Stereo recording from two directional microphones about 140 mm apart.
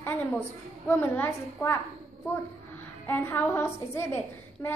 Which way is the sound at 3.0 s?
15° left (ahead or behind).